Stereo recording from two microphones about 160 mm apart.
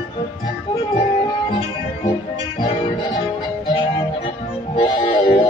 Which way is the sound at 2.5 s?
30° left (ahead or behind).